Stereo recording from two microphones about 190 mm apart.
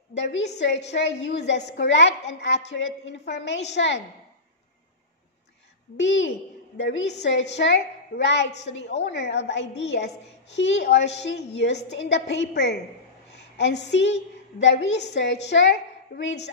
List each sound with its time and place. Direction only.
0.1 s a woman's voice: 70° left (ahead or behind)
0.7 s a woman's voice: 35° left (ahead or behind)
1.2 s a woman's voice: 65° left (ahead or behind)
5.9 s a woman's voice: 75° left (ahead or behind)